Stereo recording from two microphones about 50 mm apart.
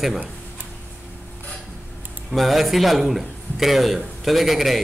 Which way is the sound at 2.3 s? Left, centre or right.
Centre.